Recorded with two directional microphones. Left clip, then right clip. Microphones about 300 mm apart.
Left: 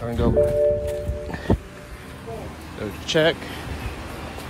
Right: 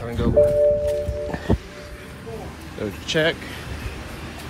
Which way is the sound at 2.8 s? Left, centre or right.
Centre.